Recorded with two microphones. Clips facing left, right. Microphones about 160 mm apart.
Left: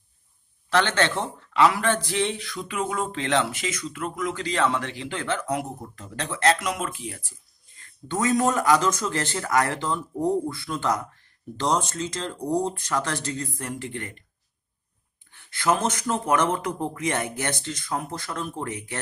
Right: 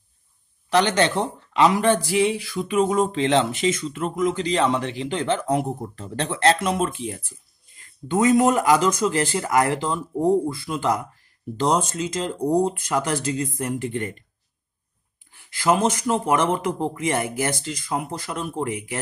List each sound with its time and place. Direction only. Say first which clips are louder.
0.7 s speech: right 3 dB; 15° right (ahead or behind)
2.7 s speech: right 8 dB; 20° right (ahead or behind)
8.1 s speech: right 5 dB; 15° right (ahead or behind)
15.6 s speech: right 4 dB; 5° right (ahead or behind)